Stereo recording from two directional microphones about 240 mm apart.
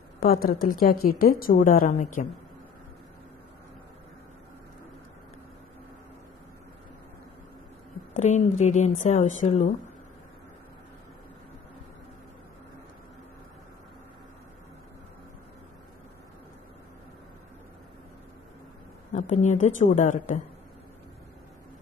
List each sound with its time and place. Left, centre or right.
0.2 s a woman's voice: left
8.1 s a woman's voice: left
19.1 s a woman's voice: left